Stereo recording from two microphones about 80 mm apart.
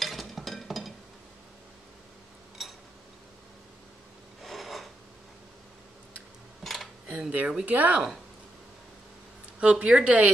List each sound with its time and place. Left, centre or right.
0.0 s music: centre
2.6 s a sound: centre
4.4 s filing: centre
6.6 s a sound: centre
7.1 s speech: centre
9.6 s speech: centre